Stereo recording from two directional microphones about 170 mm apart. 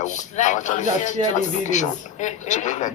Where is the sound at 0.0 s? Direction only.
45° left (ahead or behind).